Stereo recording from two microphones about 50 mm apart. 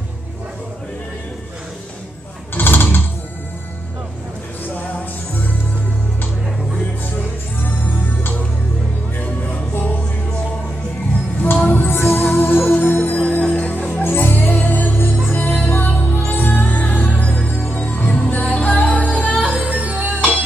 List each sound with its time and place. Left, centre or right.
2.5 s a sound: left
9.2 s music: left
11.6 s music: left
13.1 s music: left
14.0 s music: left
15.3 s music: left
16.3 s music: left
19.4 s music: right